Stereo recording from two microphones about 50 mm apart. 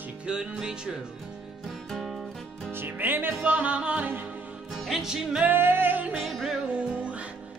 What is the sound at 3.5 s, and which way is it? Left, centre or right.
Music, right.